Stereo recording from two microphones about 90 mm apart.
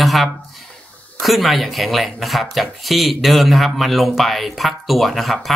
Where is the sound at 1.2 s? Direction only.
Centre (ahead or behind).